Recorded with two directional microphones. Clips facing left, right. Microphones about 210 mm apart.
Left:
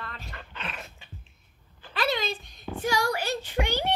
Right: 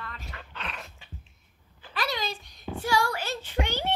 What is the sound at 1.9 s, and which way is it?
A child's voice, 25° left (ahead or behind).